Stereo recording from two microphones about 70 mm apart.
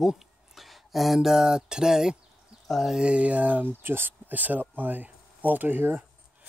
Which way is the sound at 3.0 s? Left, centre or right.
Centre.